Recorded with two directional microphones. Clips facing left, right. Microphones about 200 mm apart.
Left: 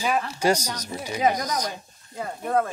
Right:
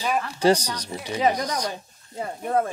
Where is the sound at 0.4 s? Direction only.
30° right (ahead or behind).